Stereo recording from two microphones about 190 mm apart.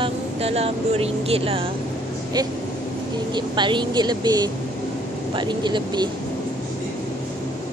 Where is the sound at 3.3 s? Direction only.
25° right (ahead or behind).